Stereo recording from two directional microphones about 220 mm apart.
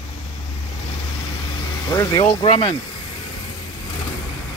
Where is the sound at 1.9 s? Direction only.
15° left (ahead or behind).